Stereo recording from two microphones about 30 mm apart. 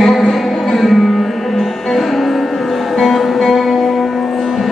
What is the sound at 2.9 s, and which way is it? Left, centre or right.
Music, centre.